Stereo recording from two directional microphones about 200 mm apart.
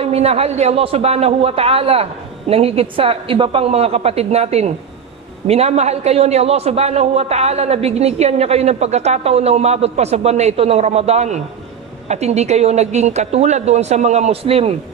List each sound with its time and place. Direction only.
0.0 s a man's voice: 30° right (ahead or behind)